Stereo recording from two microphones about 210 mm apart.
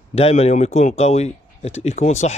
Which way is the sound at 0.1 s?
30° left (ahead or behind).